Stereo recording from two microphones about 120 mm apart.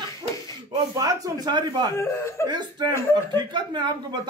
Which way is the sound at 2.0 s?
25° left (ahead or behind).